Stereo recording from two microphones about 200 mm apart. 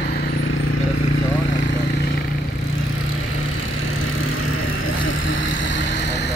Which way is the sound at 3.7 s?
90° left.